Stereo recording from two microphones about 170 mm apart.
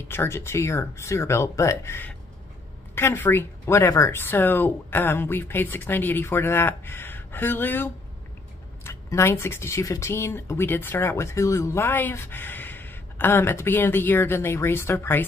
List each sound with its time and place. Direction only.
0.1 s speech: 15° left (ahead or behind)